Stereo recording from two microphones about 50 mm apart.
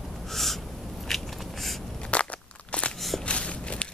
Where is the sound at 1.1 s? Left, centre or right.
Centre.